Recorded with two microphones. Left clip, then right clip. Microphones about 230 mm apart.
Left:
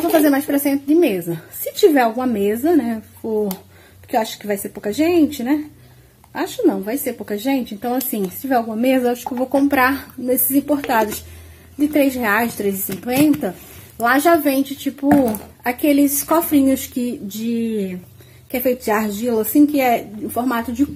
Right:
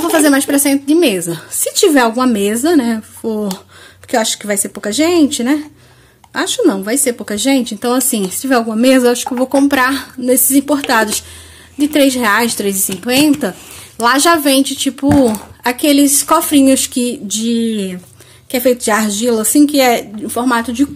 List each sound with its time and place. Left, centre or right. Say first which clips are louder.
0.1 s speech: right 5 dB; right
11.9 s speech: right 6 dB; right